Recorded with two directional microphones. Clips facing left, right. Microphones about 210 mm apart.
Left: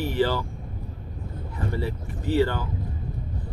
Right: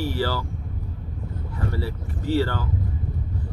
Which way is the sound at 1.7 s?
20° left (ahead or behind).